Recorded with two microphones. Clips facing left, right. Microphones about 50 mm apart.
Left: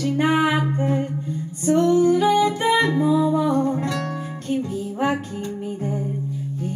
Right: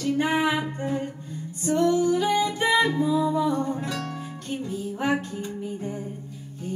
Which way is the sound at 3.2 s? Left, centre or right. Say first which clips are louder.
Left 4 dB; left.